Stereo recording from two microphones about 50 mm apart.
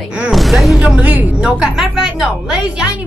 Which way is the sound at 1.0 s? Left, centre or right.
Right.